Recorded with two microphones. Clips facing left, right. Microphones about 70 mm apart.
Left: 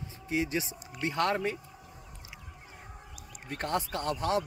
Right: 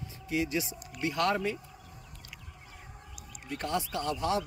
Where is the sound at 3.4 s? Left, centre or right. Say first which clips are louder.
Left 1 dB; left.